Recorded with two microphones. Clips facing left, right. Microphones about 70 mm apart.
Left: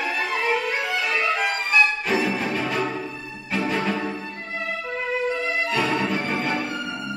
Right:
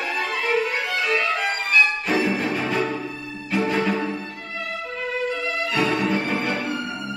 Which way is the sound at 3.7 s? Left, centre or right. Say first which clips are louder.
Right 2 dB; centre.